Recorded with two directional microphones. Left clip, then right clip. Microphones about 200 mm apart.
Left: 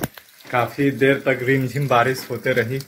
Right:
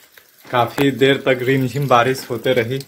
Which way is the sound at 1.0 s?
25° right (ahead or behind).